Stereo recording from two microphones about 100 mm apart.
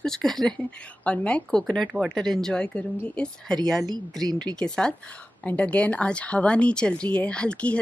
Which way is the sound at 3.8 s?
40° right (ahead or behind).